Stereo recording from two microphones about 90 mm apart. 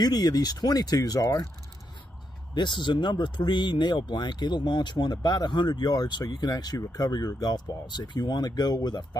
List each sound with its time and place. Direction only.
0.0 s speech: 45° left (ahead or behind)
2.5 s speech: 60° left (ahead or behind)